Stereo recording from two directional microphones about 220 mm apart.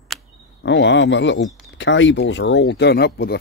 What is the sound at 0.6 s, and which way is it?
Speech, 55° left (ahead or behind).